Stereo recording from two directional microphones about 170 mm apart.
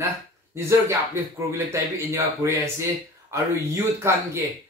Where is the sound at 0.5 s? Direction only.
15° right (ahead or behind).